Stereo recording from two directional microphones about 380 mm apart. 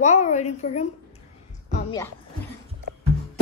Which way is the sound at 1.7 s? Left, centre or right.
Centre.